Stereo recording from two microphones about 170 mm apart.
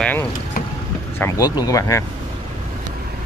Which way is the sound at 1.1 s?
15° left (ahead or behind).